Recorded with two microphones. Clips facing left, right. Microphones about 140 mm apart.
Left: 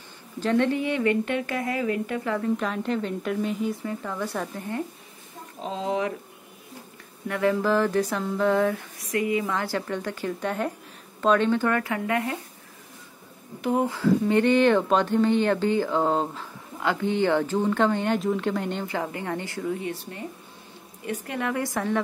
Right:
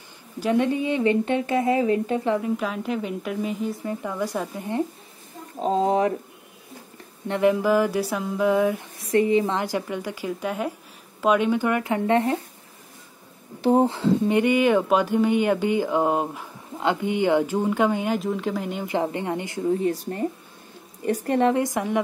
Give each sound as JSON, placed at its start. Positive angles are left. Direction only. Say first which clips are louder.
{"t": 0.4, "sound": "speech", "louder": "right 1 dB", "side_deg": -15}
{"t": 2.5, "sound": "a woman's voice", "louder": "even", "side_deg": -5}
{"t": 5.6, "sound": "speech", "louder": "right 7 dB", "side_deg": -45}
{"t": 7.2, "sound": "speech", "louder": "right 3 dB", "side_deg": -20}
{"t": 9.0, "sound": "speech", "louder": "right 6 dB", "side_deg": -30}
{"t": 9.6, "sound": "speech", "louder": "right 2 dB", "side_deg": -15}
{"t": 13.6, "sound": "speech", "louder": "right 5 dB", "side_deg": -30}
{"t": 18.9, "sound": "speech", "louder": "right 4 dB", "side_deg": -20}
{"t": 19.6, "sound": "speech", "louder": "right 11 dB", "side_deg": -35}
{"t": 21.6, "sound": "speech", "louder": "right 2 dB", "side_deg": -15}